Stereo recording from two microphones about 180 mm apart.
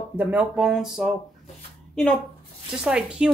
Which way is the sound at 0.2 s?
10° right (ahead or behind).